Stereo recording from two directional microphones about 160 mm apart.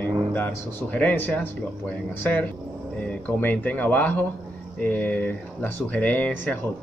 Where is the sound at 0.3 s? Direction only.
10° left (ahead or behind).